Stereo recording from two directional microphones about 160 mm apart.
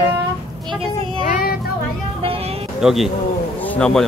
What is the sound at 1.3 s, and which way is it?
Child singing, 70° left (ahead or behind).